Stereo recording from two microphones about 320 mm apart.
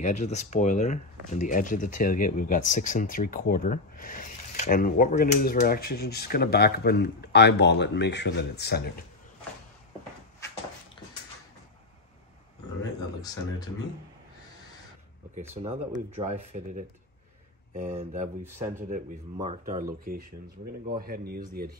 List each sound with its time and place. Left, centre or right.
0.0 s speech: left
13.2 s speech: centre
15.5 s speech: centre
18.4 s speech: centre
19.3 s speech: centre